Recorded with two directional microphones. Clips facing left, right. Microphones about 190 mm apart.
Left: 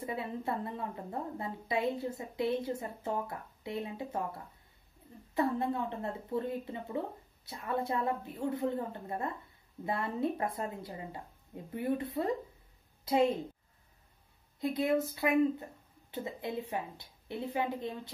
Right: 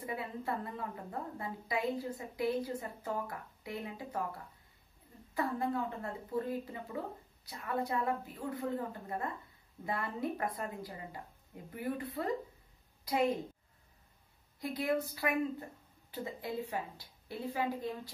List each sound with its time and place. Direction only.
0.0 s a woman's voice: 25° left (ahead or behind)
14.6 s a woman's voice: 25° left (ahead or behind)